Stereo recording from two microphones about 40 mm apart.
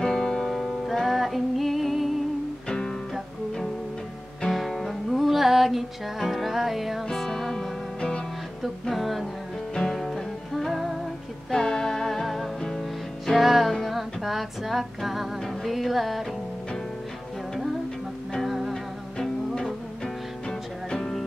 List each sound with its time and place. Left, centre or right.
0.0 s music: centre
0.8 s music: centre
4.5 s music: centre
7.1 s music: centre
8.6 s music: centre
11.5 s music: centre
13.4 s music: centre
18.5 s music: centre
19.1 s music: centre